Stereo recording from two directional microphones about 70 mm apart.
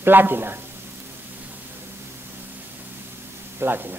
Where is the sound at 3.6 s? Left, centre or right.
Right.